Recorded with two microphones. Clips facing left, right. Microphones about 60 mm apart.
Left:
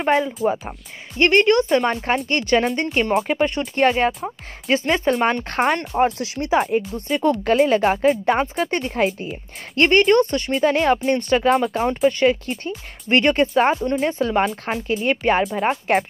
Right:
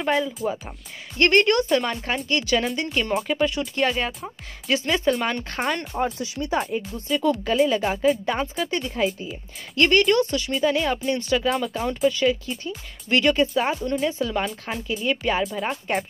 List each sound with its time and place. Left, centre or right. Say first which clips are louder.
0.0 s speech: left 4 dB; left
0.4 s speech: left 6 dB; left
1.1 s speech: left 3 dB; centre
1.6 s speech: left 4 dB; left
2.2 s speech: left 2 dB; left
5.9 s speech: left 6 dB; left
6.7 s speech: left 4 dB; left
9.8 s speech: left 4 dB; left